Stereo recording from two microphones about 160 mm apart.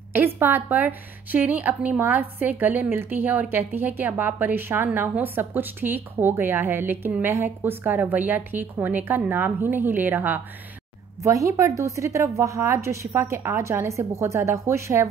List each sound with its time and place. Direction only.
0.1 s a woman's voice: 10° right (ahead or behind)